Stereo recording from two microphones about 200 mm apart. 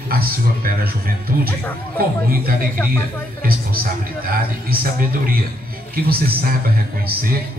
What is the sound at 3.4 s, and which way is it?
A man's voice, 50° right (ahead or behind).